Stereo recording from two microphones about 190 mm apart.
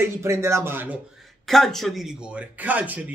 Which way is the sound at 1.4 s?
Centre (ahead or behind).